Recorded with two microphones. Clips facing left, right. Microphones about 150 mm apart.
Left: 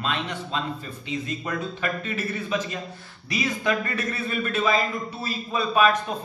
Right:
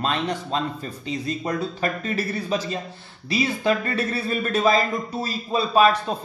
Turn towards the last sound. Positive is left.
turn(degrees=-30)  # may be behind; listen again after turning